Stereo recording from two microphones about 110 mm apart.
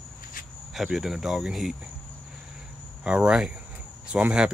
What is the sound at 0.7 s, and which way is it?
Speech, 5° right (ahead or behind).